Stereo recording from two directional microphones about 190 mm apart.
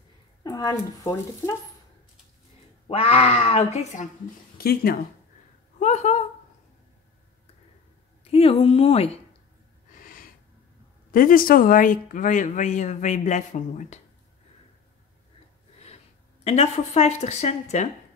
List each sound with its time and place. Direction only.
0.4 s speech: 20° left (ahead or behind)
2.9 s speech: 30° left (ahead or behind)
4.6 s speech: 55° left (ahead or behind)
5.8 s a woman's voice: 40° left (ahead or behind)
8.2 s a woman's voice: 30° left (ahead or behind)
11.1 s speech: 50° left (ahead or behind)
16.4 s speech: 35° left (ahead or behind)